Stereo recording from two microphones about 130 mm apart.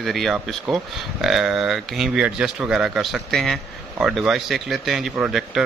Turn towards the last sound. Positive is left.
turn(degrees=-5)  # may be behind; listen again after turning